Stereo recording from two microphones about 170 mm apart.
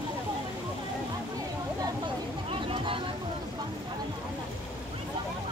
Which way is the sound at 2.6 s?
30° right (ahead or behind).